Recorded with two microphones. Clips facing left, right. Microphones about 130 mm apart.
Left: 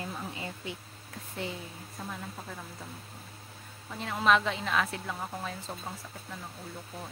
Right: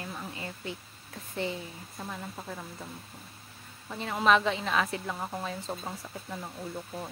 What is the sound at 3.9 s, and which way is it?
A woman's voice, centre (ahead or behind).